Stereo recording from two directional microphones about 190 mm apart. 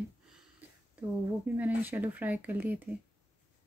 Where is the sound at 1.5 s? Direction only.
10° right (ahead or behind).